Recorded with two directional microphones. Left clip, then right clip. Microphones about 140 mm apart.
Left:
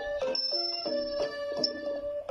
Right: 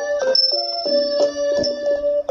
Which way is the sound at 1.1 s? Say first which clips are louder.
Right 14 dB; 50° right (ahead or behind).